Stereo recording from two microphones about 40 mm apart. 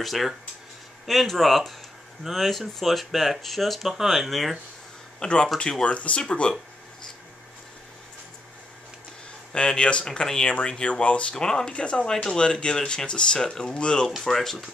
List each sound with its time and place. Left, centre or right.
0.0 s speech: centre
5.2 s speech: left
9.5 s speech: left
11.3 s speech: centre